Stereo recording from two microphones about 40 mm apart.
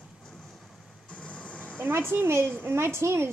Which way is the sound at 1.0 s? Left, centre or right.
Left.